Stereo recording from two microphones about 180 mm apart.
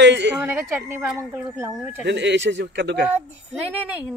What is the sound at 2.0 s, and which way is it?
Speech, 75° right (ahead or behind).